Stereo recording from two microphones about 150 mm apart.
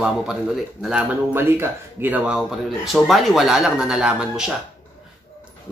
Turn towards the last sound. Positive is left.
turn(degrees=-5)  # may be behind; listen again after turning